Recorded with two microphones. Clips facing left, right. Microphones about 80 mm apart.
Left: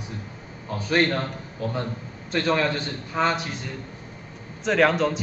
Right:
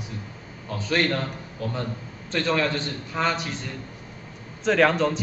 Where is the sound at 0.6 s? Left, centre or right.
Centre.